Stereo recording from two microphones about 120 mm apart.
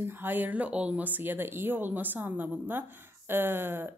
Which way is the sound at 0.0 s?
15° right (ahead or behind).